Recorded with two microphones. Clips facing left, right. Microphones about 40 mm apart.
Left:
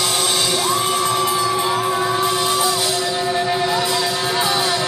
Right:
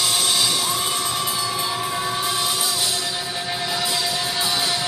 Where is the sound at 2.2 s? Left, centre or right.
Centre.